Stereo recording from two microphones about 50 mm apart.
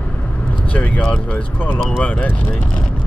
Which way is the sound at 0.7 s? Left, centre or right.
Left.